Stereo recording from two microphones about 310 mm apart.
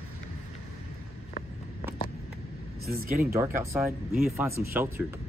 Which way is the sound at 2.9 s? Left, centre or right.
Right.